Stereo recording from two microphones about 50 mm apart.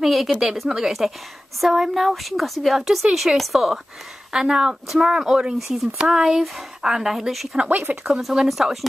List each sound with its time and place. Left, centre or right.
0.0 s a woman's voice: centre
7.7 s speech: right
8.0 s a woman's voice: centre